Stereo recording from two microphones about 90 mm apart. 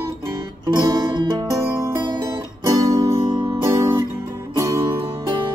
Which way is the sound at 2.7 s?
45° right (ahead or behind).